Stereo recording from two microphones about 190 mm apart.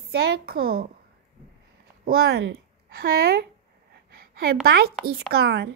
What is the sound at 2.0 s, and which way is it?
Speech, 55° right (ahead or behind).